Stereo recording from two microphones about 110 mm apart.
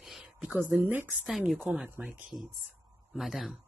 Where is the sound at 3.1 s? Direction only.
Centre (ahead or behind).